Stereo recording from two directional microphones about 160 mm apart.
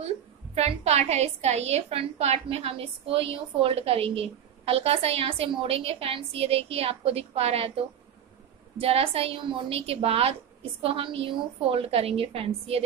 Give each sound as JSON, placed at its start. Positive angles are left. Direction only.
{"t": 0.6, "sound": "a woman's voice", "side_deg": -40}